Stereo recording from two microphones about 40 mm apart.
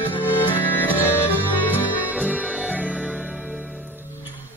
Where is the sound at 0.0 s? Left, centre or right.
Left.